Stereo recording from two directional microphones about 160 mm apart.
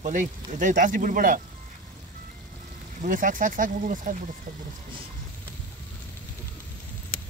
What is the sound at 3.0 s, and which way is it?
Speech, 55° right (ahead or behind).